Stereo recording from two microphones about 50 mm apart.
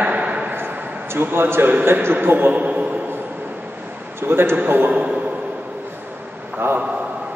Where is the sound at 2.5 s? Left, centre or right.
Right.